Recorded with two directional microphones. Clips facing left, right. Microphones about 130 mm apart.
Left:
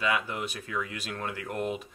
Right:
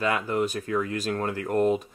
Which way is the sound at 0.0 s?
40° right (ahead or behind).